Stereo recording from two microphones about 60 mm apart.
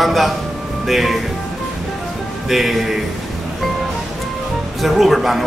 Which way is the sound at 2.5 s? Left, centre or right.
Centre.